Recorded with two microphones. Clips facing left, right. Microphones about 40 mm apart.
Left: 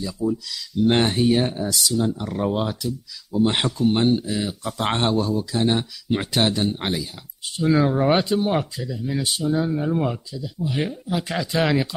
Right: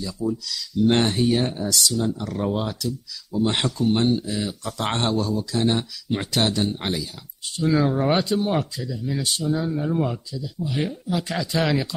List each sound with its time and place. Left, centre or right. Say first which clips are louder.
0.0 s speech: left 2 dB; centre
4.3 s speech: left 2 dB; centre